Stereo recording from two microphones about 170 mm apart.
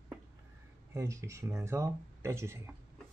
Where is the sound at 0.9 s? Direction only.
15° right (ahead or behind).